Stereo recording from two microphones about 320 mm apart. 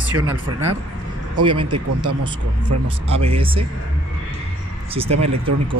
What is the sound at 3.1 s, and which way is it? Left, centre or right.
Speech, centre.